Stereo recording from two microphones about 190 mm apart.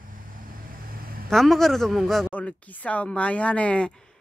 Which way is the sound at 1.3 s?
Centre (ahead or behind).